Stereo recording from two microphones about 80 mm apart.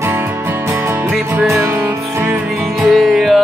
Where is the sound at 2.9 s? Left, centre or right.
Centre.